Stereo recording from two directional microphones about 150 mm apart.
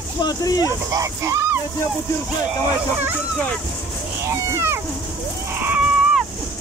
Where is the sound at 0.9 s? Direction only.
20° right (ahead or behind).